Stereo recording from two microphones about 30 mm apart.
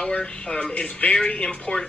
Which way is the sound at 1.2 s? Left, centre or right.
Left.